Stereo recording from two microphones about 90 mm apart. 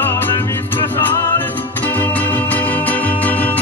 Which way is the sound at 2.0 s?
20° left (ahead or behind).